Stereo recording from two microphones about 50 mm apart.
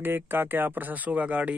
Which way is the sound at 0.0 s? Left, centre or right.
Right.